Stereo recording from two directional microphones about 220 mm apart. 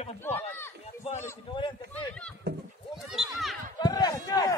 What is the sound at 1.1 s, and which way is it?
Speech, 15° left (ahead or behind).